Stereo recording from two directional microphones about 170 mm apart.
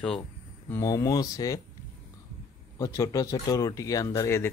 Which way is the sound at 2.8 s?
20° left (ahead or behind).